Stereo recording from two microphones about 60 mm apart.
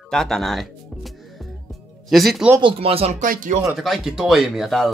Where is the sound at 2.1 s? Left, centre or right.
Centre.